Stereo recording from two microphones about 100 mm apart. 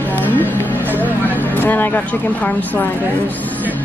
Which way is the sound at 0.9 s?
20° left (ahead or behind).